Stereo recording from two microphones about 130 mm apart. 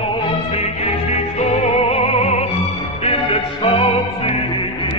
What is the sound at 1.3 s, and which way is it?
Music, 55° left (ahead or behind).